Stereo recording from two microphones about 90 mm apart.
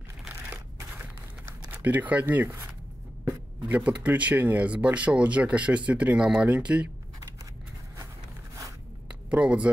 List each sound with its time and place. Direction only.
1.7 s speech: 20° right (ahead or behind)
9.3 s speech: 15° right (ahead or behind)